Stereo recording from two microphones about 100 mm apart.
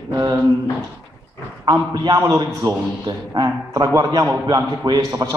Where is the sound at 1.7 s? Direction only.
40° right (ahead or behind).